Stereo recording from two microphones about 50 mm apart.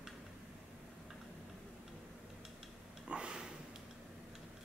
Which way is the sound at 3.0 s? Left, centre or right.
Centre.